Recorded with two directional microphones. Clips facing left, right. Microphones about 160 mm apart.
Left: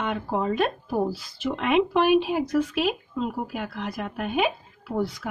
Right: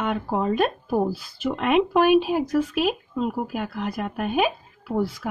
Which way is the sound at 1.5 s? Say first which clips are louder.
Right 2 dB; 45° right (ahead or behind).